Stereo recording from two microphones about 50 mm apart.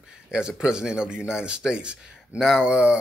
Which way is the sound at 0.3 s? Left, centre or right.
Centre.